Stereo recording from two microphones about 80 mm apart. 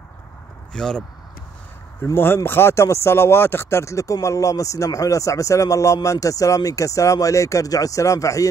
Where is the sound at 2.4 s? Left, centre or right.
Left.